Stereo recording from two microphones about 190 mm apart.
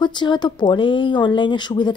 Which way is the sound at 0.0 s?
25° left (ahead or behind).